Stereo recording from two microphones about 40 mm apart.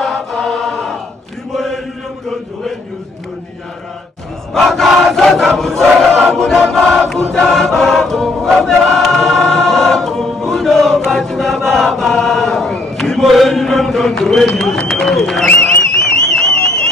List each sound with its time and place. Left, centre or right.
0.0 s choir: centre
1.5 s chant: centre
4.6 s crowd: centre
5.5 s chant: centre
6.3 s choir: centre
12.7 s chant: centre
14.9 s speech: centre
16.1 s a sound: centre